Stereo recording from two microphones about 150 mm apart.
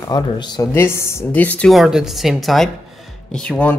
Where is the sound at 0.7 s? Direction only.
15° left (ahead or behind).